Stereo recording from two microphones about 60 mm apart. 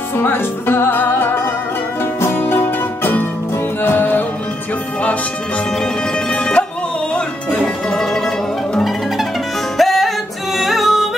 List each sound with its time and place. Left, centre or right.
0.2 s speech: left
2.1 s music: left
5.8 s music: centre
7.6 s music: centre